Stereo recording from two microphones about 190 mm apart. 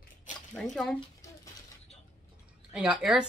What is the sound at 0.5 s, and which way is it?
Speech, centre (ahead or behind).